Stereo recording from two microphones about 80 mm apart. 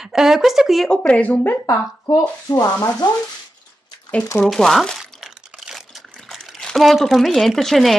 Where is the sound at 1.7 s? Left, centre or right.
Left.